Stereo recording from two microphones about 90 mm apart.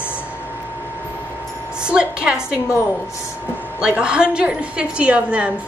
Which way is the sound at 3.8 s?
10° right (ahead or behind).